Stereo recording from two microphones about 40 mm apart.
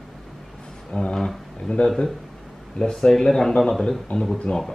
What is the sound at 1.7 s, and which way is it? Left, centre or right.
Speech, left.